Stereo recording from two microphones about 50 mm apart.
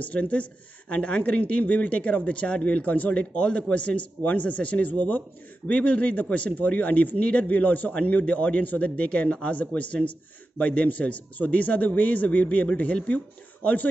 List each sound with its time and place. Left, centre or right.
0.0 s a man's voice: left